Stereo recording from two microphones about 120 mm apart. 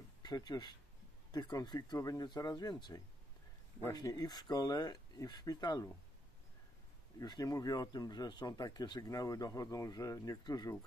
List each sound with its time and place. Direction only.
0.2 s speech: 35° left (ahead or behind)
7.2 s speech: 35° left (ahead or behind)